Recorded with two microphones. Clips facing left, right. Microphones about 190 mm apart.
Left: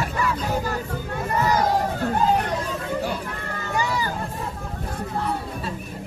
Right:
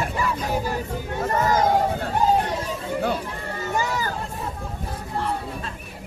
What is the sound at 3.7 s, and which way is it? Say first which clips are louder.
Crowd: left 1 dB; 45° right (ahead or behind).